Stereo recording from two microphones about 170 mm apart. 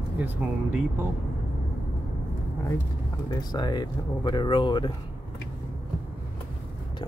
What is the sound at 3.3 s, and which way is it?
Speech, 25° left (ahead or behind).